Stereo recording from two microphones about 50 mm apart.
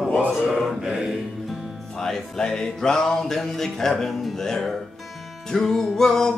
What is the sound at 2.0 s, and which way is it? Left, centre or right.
Music, centre.